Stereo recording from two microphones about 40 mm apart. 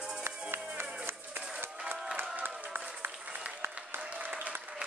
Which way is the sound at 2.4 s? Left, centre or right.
Right.